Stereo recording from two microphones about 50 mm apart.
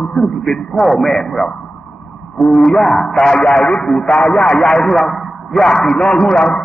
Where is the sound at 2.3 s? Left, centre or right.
Centre.